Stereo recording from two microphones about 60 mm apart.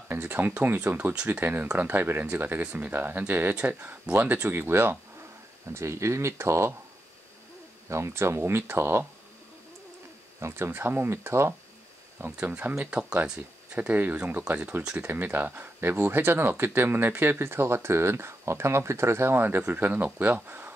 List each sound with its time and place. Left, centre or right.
0.1 s speech: right
5.7 s speech: right
7.9 s speech: right
10.4 s speech: right
12.3 s speech: right
15.0 s speech: right
20.4 s a sound: right